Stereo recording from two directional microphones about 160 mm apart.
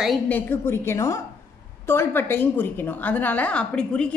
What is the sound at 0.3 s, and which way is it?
A woman's voice, 15° left (ahead or behind).